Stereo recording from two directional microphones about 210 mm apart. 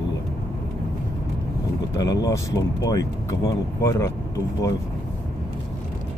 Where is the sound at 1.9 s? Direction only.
15° left (ahead or behind).